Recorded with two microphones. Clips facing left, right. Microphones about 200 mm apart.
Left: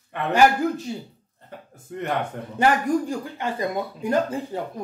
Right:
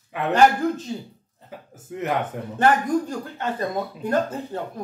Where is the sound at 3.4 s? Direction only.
10° left (ahead or behind).